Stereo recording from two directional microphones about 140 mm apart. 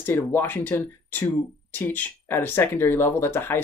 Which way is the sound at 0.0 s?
15° left (ahead or behind).